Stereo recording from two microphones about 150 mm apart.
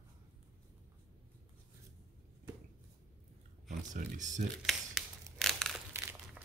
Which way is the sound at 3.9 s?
55° right (ahead or behind).